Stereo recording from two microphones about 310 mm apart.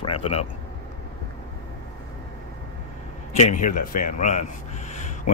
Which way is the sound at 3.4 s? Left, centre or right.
Left.